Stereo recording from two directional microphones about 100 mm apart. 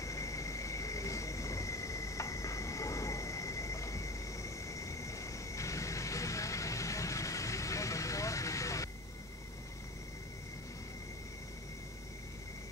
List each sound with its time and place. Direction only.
0.0 s vehicle: 30° left (ahead or behind)